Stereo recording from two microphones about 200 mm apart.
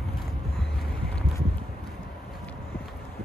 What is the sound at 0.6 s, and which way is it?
Vehicle, 5° left (ahead or behind).